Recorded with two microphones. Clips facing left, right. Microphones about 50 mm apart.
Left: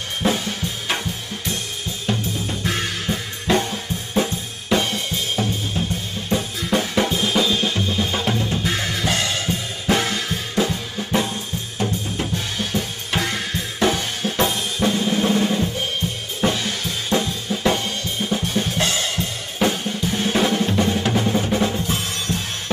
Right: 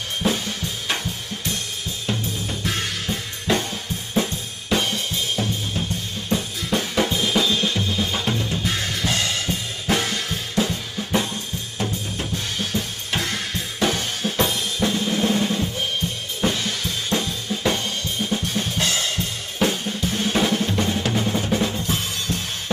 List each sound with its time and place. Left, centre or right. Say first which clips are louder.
2.0 s drum kit: left 3 dB; centre
4.9 s drum kit: left 1 dB; centre
12.7 s drum kit: left 4 dB; centre
14.8 s drum: left 2 dB; centre
16.3 s drum kit: left 2 dB; centre
19.6 s drum: left 1 dB; centre
22.3 s music: left 2 dB; centre